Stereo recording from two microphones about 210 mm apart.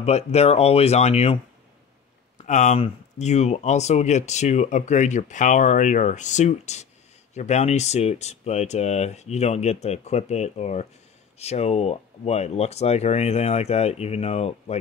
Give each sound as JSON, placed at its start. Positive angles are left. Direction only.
{"t": 0.0, "sound": "speech", "side_deg": 30}